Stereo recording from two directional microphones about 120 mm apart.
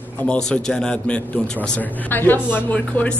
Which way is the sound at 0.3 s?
5° left (ahead or behind).